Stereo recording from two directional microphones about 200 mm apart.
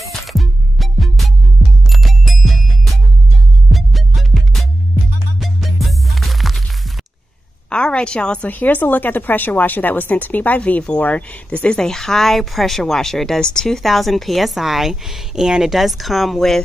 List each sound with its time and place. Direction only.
0.3 s music: centre (ahead or behind)
7.7 s a woman's voice: 5° left (ahead or behind)